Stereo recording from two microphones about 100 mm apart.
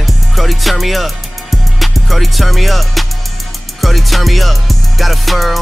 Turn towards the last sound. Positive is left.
turn(degrees=0)  # may be behind; listen again after turning